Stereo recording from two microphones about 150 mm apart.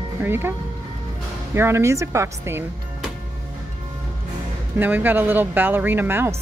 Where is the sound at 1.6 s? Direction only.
15° right (ahead or behind).